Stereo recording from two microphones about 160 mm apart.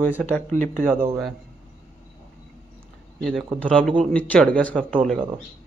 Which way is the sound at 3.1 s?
5° left (ahead or behind).